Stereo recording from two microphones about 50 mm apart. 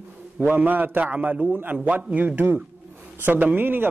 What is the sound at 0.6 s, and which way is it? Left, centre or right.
Speech, right.